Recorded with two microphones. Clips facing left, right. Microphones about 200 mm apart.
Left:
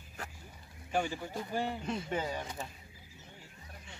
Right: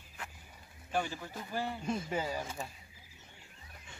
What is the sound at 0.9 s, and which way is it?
Speech, 15° left (ahead or behind).